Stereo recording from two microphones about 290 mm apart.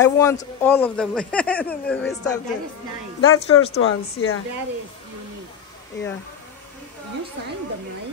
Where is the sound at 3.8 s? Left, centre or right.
Left.